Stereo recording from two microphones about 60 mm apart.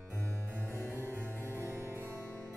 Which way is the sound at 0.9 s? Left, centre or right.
Right.